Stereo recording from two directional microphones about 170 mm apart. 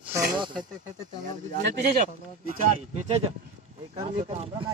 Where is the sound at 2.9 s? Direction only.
40° right (ahead or behind).